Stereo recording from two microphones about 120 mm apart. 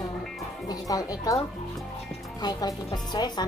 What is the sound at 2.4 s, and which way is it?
Speech, 35° left (ahead or behind).